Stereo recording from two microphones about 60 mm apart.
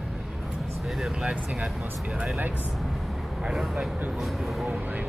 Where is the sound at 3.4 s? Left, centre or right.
Centre.